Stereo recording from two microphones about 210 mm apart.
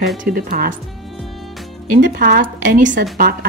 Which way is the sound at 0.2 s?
45° right (ahead or behind).